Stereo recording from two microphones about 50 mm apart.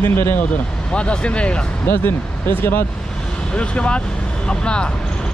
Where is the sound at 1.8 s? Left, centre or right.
Left.